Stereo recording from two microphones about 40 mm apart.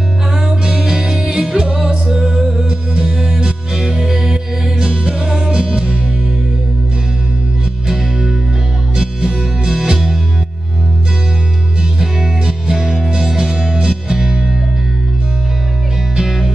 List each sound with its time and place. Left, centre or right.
0.5 s music: centre
7.9 s music: centre
12.0 s music: centre
16.2 s music: centre